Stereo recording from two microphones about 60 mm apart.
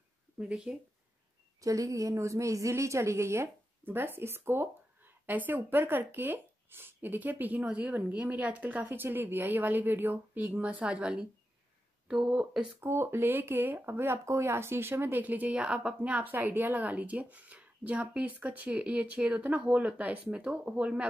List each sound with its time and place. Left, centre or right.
0.4 s speech: centre
1.6 s a woman's voice: right
3.8 s speech: right; by 11.2 s centre
12.3 s speech: centre
12.8 s speech: right